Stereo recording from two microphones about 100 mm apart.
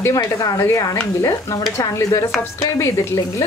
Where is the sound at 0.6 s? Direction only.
25° left (ahead or behind).